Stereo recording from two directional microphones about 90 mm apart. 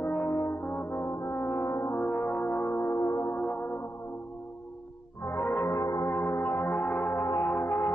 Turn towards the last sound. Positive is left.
turn(degrees=25)  # may be behind; listen again after turning